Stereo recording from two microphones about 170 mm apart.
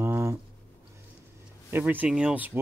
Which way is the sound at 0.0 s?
15° right (ahead or behind).